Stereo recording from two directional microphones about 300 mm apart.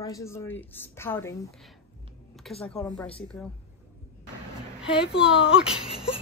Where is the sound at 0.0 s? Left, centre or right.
Centre.